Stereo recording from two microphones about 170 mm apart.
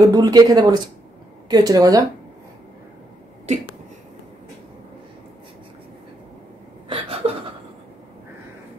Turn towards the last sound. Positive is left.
turn(degrees=-35)  # may be behind; listen again after turning